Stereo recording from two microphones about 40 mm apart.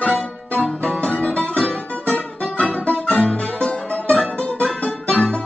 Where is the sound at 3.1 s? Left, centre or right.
Left.